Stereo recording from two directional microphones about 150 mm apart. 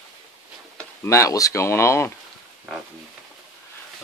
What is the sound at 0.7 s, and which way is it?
Speech, 20° left (ahead or behind).